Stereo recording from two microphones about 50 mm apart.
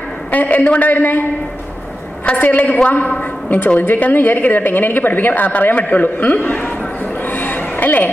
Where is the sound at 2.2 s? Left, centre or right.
Left.